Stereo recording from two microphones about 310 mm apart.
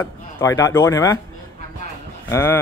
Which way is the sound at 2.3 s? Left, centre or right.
Centre.